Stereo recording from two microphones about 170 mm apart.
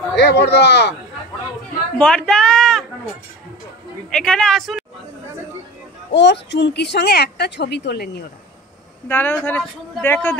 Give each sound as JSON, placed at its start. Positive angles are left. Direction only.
{"t": 0.1, "sound": "speech", "side_deg": 80}
{"t": 2.0, "sound": "speech", "side_deg": 5}
{"t": 4.1, "sound": "a woman's voice", "side_deg": 5}
{"t": 6.1, "sound": "speech", "side_deg": 90}
{"t": 9.0, "sound": "speech", "side_deg": 10}